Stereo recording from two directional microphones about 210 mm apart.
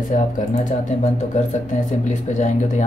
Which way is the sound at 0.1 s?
35° left (ahead or behind).